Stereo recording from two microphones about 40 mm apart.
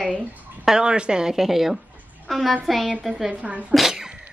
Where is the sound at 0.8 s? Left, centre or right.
Right.